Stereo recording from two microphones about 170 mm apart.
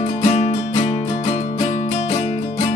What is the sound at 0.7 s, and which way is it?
Music, 25° left (ahead or behind).